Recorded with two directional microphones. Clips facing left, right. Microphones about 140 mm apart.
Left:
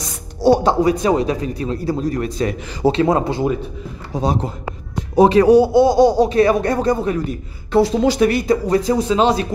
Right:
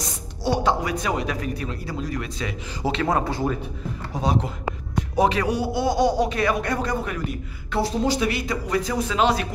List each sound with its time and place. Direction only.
0.4 s speech: 35° left (ahead or behind)
3.0 s speech: 25° left (ahead or behind)
4.2 s speech: 40° left (ahead or behind)
7.8 s speech: 90° left
8.2 s speech: 45° left (ahead or behind)